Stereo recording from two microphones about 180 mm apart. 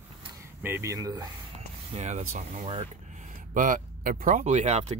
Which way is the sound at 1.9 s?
40° right (ahead or behind).